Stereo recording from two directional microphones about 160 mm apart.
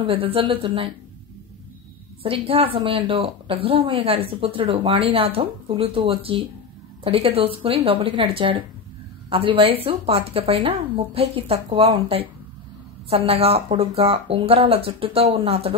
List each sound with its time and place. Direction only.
0.0 s a woman's voice: 35° right (ahead or behind)
2.4 s a woman's voice: 35° right (ahead or behind)